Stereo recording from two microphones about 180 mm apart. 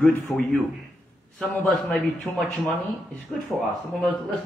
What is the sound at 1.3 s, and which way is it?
Speech, 5° left (ahead or behind).